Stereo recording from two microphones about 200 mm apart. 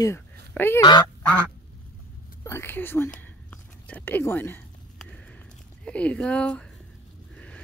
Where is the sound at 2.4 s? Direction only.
15° left (ahead or behind).